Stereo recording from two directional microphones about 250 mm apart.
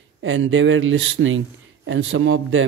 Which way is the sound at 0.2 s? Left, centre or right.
Right.